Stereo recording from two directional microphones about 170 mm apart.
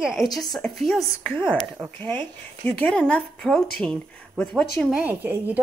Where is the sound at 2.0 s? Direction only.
10° left (ahead or behind).